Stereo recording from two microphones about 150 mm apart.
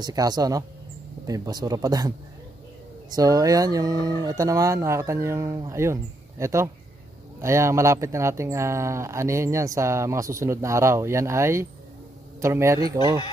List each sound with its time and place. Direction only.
0.0 s speech: 25° right (ahead or behind)
3.2 s speech: 25° right (ahead or behind)